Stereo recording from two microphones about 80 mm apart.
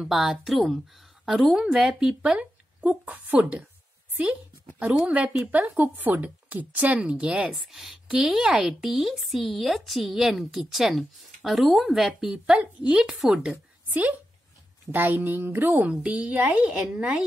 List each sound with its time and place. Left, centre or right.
0.0 s speech: centre
4.7 s speech: centre
13.2 s speech: centre
13.8 s a sound: right
14.9 s a woman's voice: right